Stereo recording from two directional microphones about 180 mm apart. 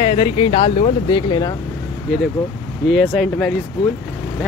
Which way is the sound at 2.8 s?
Centre (ahead or behind).